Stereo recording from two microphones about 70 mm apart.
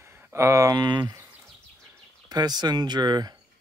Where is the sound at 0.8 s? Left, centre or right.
Right.